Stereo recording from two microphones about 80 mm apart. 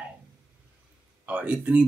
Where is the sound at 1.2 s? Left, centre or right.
Centre.